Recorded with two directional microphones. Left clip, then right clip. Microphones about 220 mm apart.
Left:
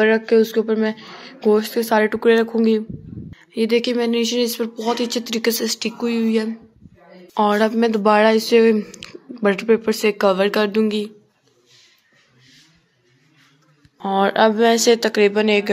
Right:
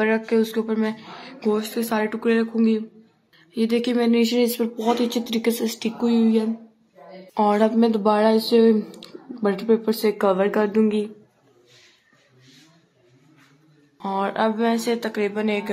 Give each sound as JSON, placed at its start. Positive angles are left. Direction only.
{"t": 0.0, "sound": "speech", "side_deg": 10}
{"t": 7.3, "sound": "speech", "side_deg": 10}
{"t": 13.9, "sound": "speech", "side_deg": 10}